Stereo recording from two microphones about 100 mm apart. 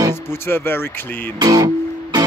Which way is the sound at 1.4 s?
40° right (ahead or behind).